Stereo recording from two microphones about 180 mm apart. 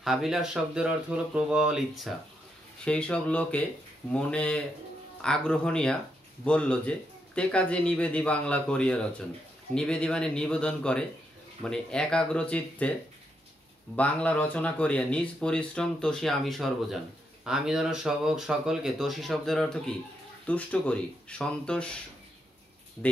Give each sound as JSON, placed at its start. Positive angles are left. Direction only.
{"t": 0.0, "sound": "speech", "side_deg": 0}
{"t": 13.9, "sound": "speech", "side_deg": 5}